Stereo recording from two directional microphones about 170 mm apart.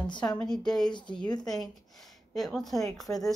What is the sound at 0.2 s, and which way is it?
Speech, 5° left (ahead or behind).